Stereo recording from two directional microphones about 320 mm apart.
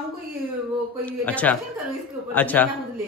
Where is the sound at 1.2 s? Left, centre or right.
Centre.